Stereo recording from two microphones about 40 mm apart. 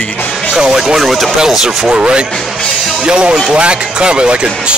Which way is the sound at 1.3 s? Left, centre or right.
Centre.